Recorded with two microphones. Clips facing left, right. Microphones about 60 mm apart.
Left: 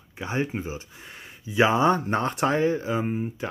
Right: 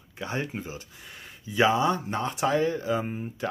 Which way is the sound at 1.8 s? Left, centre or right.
Left.